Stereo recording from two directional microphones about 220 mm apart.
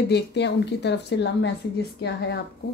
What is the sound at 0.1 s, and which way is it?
A woman's voice, 50° left (ahead or behind).